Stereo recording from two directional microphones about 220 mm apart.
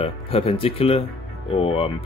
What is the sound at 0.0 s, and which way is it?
Speech, 25° left (ahead or behind).